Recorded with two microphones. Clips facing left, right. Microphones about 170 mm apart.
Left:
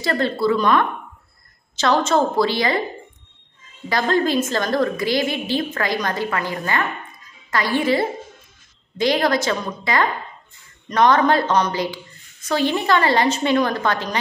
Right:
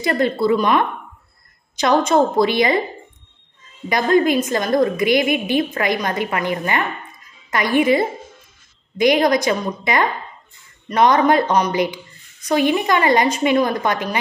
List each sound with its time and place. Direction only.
0.0 s a woman's voice: 20° right (ahead or behind)
3.9 s a woman's voice: 15° right (ahead or behind)